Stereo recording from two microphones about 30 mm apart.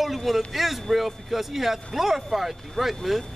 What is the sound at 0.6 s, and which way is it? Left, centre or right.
Speech, centre.